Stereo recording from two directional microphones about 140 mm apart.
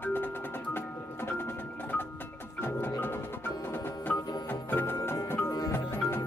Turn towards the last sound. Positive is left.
turn(degrees=20)  # may be behind; listen again after turning